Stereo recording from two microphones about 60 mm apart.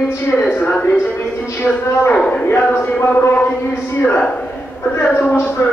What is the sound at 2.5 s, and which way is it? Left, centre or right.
Speech, left.